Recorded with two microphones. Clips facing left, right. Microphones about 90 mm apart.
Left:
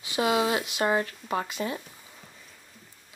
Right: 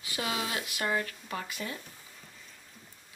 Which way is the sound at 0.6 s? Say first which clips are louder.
Left 6 dB; 25° left (ahead or behind).